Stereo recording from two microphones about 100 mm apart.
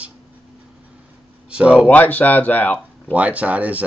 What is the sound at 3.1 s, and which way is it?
Speech, 15° right (ahead or behind).